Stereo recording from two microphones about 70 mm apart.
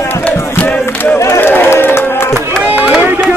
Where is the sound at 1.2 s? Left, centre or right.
Left.